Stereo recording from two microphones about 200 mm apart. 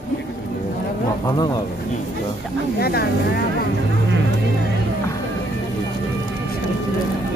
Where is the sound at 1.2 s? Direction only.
20° left (ahead or behind).